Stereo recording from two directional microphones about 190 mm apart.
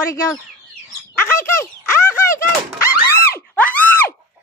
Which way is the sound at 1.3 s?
15° left (ahead or behind).